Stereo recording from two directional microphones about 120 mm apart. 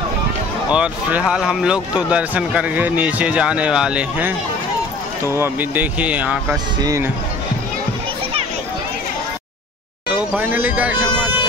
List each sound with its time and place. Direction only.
0.7 s speech: 10° right (ahead or behind)
6.5 s speech: 30° right (ahead or behind)
10.1 s a sound: 15° right (ahead or behind)